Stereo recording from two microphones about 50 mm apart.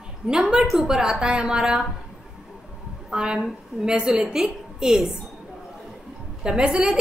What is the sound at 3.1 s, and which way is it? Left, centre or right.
A woman's voice, centre.